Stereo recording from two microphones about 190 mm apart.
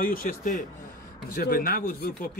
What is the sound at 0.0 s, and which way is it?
Speech, 45° left (ahead or behind).